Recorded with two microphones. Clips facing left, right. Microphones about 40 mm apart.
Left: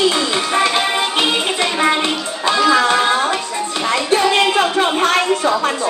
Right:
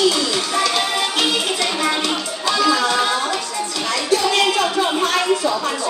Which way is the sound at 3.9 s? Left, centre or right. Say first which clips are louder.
Left 4 dB; left.